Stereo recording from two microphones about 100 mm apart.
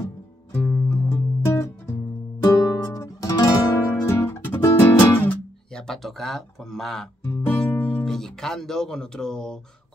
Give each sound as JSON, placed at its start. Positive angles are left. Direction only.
{"t": 0.0, "sound": "music", "side_deg": 25}
{"t": 2.4, "sound": "guitar", "side_deg": 35}
{"t": 4.9, "sound": "music", "side_deg": 20}
{"t": 5.7, "sound": "speech", "side_deg": 5}
{"t": 7.4, "sound": "music", "side_deg": 20}
{"t": 8.0, "sound": "speech", "side_deg": 5}